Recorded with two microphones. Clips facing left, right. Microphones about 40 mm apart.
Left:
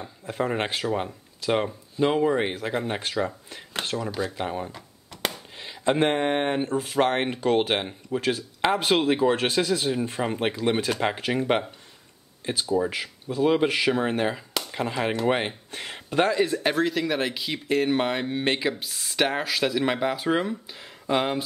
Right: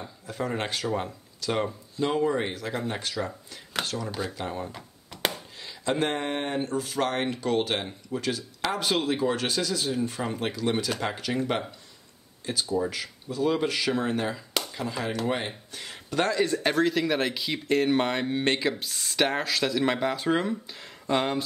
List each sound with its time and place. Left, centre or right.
0.3 s speech: left
4.4 s speech: centre
4.6 s a sound: centre
5.6 s speech: left
16.2 s speech: centre